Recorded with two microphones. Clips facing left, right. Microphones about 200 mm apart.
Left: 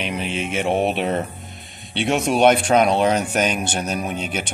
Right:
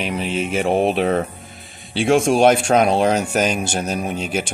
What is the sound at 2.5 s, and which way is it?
Speech, centre (ahead or behind).